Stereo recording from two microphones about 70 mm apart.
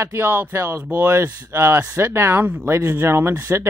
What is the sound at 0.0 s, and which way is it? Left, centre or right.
Speech, right.